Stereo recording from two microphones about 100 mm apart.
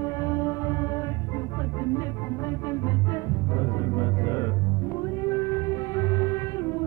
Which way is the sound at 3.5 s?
35° left (ahead or behind).